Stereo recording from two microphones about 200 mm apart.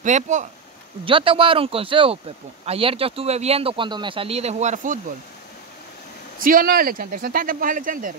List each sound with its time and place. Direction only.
0.0 s speech: 35° right (ahead or behind)
1.0 s speech: 25° right (ahead or behind)
6.4 s speech: 45° right (ahead or behind)